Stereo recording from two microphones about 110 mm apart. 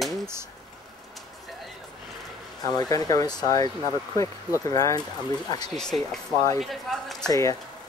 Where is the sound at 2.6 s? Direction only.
35° left (ahead or behind).